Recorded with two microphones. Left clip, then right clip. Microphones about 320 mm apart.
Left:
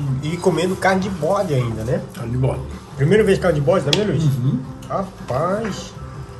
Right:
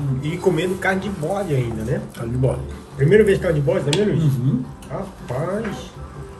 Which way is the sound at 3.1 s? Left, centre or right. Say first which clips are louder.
Even; centre.